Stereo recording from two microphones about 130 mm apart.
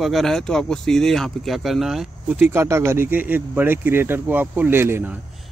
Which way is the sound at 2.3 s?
15° right (ahead or behind).